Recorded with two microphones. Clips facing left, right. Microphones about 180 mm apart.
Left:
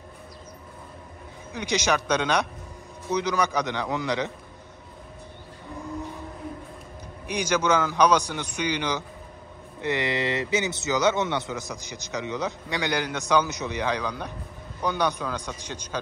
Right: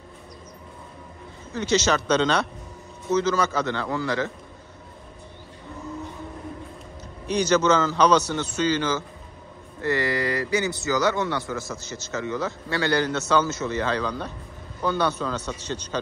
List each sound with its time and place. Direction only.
1.5 s a man's voice: 15° left (ahead or behind)
7.2 s a man's voice: 10° left (ahead or behind)